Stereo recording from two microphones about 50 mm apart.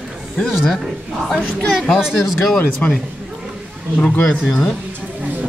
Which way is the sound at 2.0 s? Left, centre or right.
Centre.